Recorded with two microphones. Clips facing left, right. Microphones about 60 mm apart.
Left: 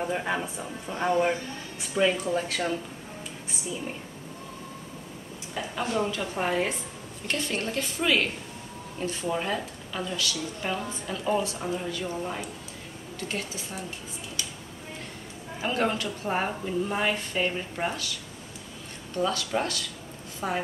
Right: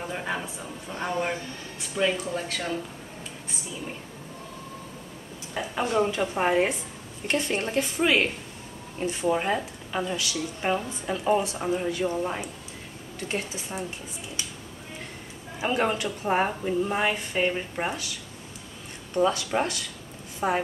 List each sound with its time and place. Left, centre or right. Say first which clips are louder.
0.0 s a man's voice: left 3 dB; centre
5.5 s speech: right 3 dB; right
15.6 s a woman's voice: right 2 dB; centre
19.1 s a woman's voice: right 4 dB; right